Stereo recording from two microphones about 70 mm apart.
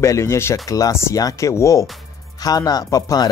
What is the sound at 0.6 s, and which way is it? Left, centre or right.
Speech, left.